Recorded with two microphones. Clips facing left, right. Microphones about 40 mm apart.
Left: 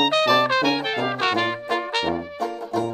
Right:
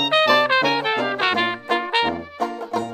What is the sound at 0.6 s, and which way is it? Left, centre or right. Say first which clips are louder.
Brass instrument: right 2 dB; centre.